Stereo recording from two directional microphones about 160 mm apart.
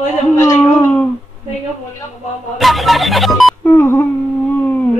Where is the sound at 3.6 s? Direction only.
15° left (ahead or behind).